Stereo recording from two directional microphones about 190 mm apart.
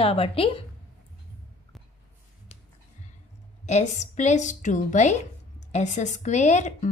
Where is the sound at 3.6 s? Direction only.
40° left (ahead or behind).